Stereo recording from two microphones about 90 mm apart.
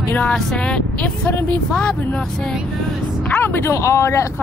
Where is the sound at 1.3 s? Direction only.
25° left (ahead or behind).